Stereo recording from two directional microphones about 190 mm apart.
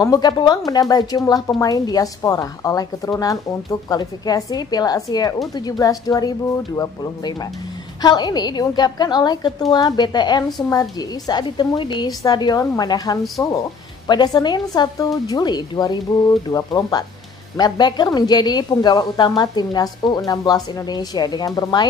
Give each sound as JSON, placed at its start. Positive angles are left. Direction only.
{"t": 0.0, "sound": "a woman's voice", "side_deg": 20}
{"t": 8.0, "sound": "a woman's voice", "side_deg": 20}